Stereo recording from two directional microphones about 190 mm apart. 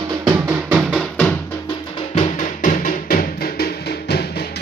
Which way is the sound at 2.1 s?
35° left (ahead or behind).